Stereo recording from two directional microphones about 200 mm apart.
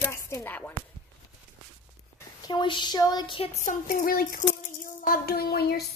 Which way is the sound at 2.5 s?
25° left (ahead or behind).